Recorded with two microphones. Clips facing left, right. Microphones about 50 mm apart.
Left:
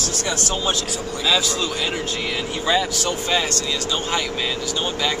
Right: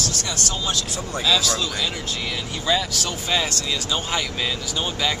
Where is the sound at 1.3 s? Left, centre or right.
Centre.